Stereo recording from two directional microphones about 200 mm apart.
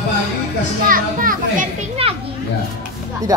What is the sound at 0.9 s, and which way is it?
Speech, 45° right (ahead or behind).